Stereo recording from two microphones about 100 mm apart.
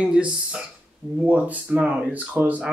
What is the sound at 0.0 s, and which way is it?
Speech, 10° right (ahead or behind).